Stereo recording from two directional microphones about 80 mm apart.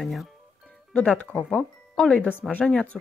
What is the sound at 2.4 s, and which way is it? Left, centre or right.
Speech, centre.